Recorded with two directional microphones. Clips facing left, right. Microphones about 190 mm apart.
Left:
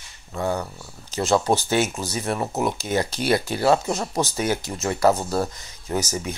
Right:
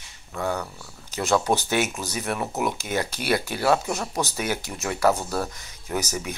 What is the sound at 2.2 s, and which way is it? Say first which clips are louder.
Speech: left 2 dB; 20° left (ahead or behind).